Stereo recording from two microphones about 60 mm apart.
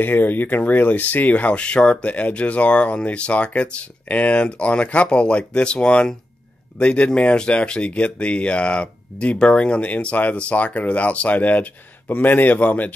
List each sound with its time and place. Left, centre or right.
0.0 s speech: left